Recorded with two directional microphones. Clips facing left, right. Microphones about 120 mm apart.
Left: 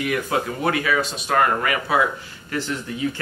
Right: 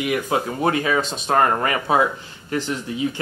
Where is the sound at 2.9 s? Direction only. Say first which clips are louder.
Right 3 dB; 20° right (ahead or behind).